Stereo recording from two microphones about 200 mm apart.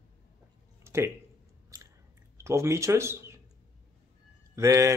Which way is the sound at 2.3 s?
15° right (ahead or behind).